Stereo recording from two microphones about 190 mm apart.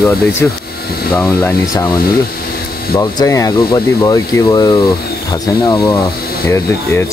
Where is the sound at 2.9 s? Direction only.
15° left (ahead or behind).